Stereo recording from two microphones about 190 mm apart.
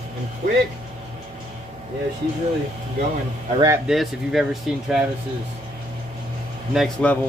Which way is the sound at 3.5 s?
15° right (ahead or behind).